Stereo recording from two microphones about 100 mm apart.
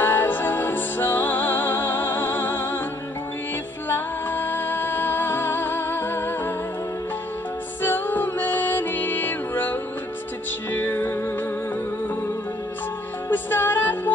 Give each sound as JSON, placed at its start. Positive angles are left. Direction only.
{"t": 0.0, "sound": "music", "side_deg": 20}
{"t": 3.9, "sound": "music", "side_deg": 20}
{"t": 7.8, "sound": "music", "side_deg": 20}
{"t": 13.3, "sound": "music", "side_deg": 20}